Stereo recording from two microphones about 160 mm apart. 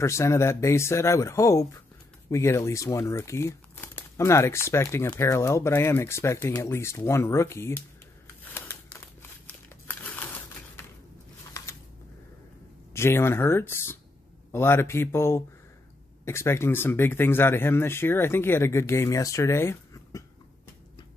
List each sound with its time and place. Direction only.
0.0 s speech: 20° left (ahead or behind)
8.5 s crumpling: 10° left (ahead or behind)
12.9 s speech: 15° left (ahead or behind)